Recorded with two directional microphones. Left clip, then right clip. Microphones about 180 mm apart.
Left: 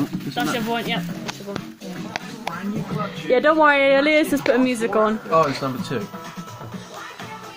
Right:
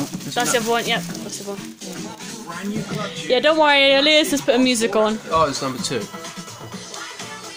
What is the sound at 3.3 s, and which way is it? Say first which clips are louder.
Speech: even; centre (ahead or behind).